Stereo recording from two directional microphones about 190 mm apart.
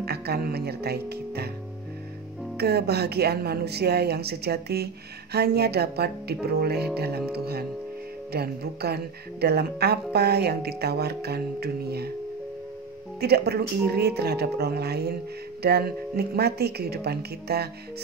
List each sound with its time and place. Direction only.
0.0 s speech: 55° right (ahead or behind)
2.5 s a woman's voice: 55° right (ahead or behind)
13.2 s a woman's voice: 55° right (ahead or behind)